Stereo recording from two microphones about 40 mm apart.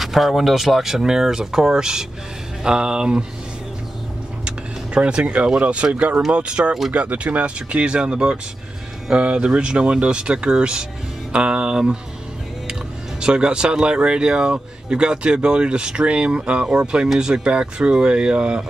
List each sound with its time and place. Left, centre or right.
0.0 s speech: centre
4.5 s a sound: right
5.6 s speech: right
13.2 s speech: right